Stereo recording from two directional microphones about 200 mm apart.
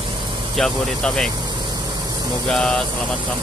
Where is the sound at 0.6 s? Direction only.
Centre (ahead or behind).